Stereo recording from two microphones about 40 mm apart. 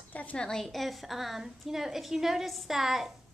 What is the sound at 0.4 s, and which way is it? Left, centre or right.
Speech, centre.